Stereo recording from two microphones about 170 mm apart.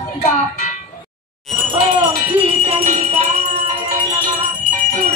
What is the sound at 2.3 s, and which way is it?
Jingle bell, 35° right (ahead or behind).